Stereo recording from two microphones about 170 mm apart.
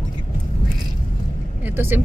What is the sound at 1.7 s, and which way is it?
Speech, 10° right (ahead or behind).